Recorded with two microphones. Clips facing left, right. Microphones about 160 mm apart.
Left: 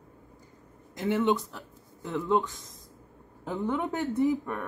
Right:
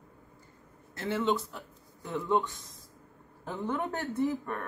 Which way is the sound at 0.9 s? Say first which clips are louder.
Left 4 dB; 15° left (ahead or behind).